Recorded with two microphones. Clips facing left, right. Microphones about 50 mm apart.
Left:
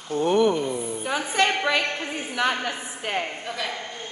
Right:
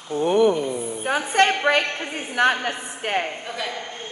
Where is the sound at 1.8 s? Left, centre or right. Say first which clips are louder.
Even; right.